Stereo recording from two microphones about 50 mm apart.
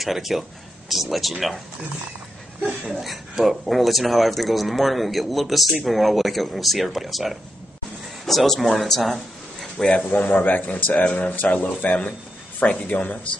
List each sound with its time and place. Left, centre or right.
0.0 s speech: centre
2.9 s speech: centre
9.9 s speech: left